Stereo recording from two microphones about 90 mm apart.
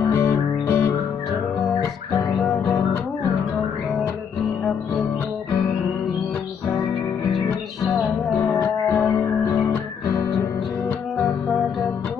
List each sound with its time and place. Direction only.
0.2 s music: 30° left (ahead or behind)
8.5 s music: 25° left (ahead or behind)